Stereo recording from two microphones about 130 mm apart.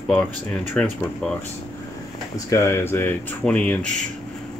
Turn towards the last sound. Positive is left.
turn(degrees=10)  # may be behind; listen again after turning